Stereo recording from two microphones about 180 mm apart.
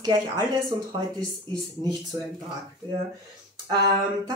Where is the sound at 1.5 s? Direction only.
25° right (ahead or behind).